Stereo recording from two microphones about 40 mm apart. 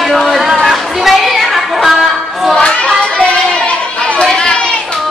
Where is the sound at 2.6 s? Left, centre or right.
Left.